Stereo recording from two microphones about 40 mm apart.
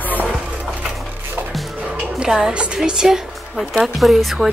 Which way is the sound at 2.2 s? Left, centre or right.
Centre.